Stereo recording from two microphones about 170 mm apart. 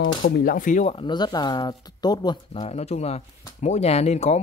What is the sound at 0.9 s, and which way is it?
Speech, 25° left (ahead or behind).